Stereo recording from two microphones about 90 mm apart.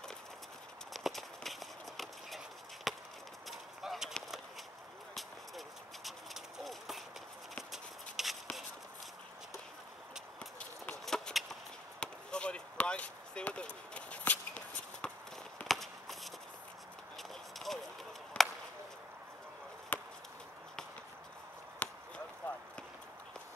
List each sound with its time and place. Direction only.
0.9 s run: centre (ahead or behind)
3.4 s clip-clop: centre (ahead or behind)
6.0 s clip-clop: centre (ahead or behind)
7.7 s rub: centre (ahead or behind)
10.6 s a sound: 10° left (ahead or behind)
11.1 s a sound: centre (ahead or behind)
12.0 s chop: 10° left (ahead or behind)
15.6 s a sound: centre (ahead or behind)
17.2 s clip-clop: centre (ahead or behind)
18.4 s chop: 10° left (ahead or behind)
19.9 s chop: 20° left (ahead or behind)
21.8 s basketball bounce: 20° left (ahead or behind)